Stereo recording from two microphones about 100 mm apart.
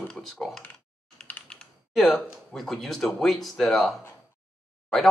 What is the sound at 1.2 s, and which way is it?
Computer keyboard, 15° left (ahead or behind).